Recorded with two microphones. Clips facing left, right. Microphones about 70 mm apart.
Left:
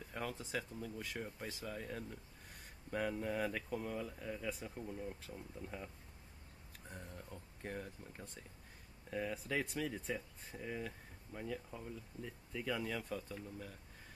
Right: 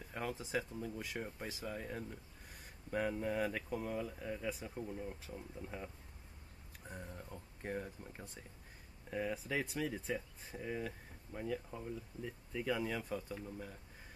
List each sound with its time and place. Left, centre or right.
0.0 s speech: centre
6.9 s speech: centre